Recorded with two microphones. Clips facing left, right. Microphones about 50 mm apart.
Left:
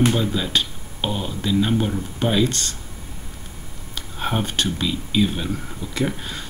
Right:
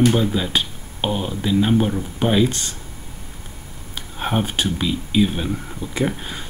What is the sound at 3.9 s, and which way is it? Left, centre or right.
Speech, centre.